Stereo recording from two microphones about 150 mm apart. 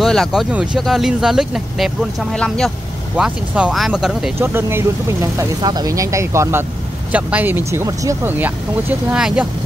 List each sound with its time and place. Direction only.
0.0 s speech: centre (ahead or behind)
3.2 s speech: 5° right (ahead or behind)
4.4 s speech: 15° right (ahead or behind)
7.1 s speech: 10° right (ahead or behind)